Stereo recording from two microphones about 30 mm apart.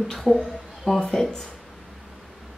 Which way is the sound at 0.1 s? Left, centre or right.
Centre.